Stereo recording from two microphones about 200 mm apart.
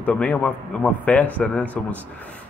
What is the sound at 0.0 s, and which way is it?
Speech, 5° left (ahead or behind).